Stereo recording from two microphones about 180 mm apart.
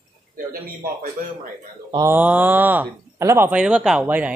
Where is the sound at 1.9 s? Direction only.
15° right (ahead or behind).